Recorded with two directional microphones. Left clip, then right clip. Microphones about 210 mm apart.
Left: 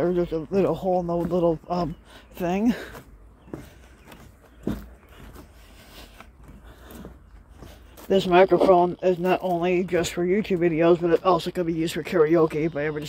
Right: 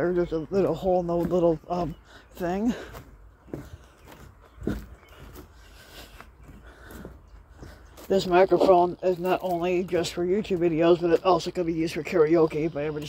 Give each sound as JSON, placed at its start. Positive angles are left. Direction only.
{"t": 0.0, "sound": "speech", "side_deg": 10}
{"t": 5.8, "sound": "a sound", "side_deg": 0}
{"t": 7.6, "sound": "speech", "side_deg": 15}